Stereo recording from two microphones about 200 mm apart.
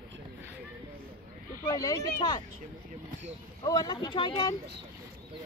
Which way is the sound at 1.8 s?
20° left (ahead or behind).